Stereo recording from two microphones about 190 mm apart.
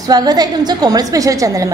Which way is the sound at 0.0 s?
20° right (ahead or behind).